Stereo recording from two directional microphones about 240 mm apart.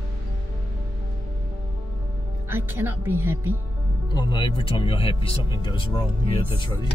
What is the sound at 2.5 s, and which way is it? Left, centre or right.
Speech, centre.